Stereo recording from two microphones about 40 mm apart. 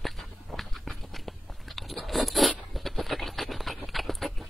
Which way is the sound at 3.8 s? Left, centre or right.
Centre.